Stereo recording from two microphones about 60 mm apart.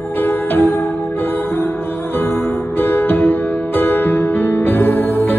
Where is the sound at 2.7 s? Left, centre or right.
Left.